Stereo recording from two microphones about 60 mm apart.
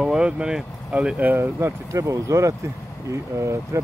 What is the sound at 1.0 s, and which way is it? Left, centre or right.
Speech, right.